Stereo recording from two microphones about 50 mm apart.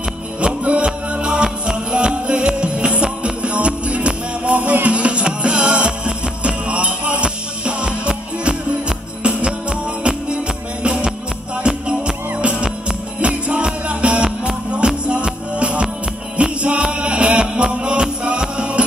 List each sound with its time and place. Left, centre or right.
0.4 s music: right